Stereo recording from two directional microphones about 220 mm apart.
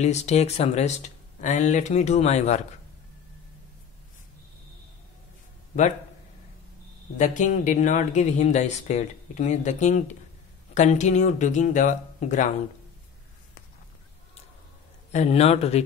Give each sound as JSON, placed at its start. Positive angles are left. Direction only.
{"t": 0.0, "sound": "speech", "side_deg": 30}
{"t": 7.2, "sound": "speech", "side_deg": 35}
{"t": 15.1, "sound": "a man's voice", "side_deg": 30}